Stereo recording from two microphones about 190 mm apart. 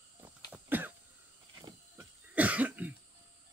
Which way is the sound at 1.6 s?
20° right (ahead or behind).